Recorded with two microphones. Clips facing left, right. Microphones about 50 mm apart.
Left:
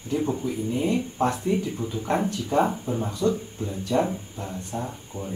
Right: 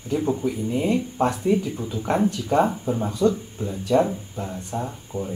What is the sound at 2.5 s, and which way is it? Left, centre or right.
Speech, right.